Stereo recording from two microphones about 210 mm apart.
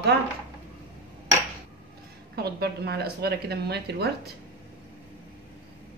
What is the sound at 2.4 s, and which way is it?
A woman's voice, 50° right (ahead or behind).